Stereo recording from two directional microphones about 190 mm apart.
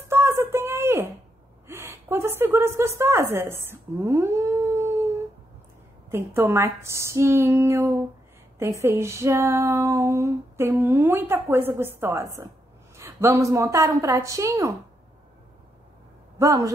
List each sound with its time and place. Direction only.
0.1 s a sound: 15° right (ahead or behind)
1.7 s a woman's voice: 15° right (ahead or behind)
6.0 s female singing: 15° right (ahead or behind)
16.3 s speech: 15° right (ahead or behind)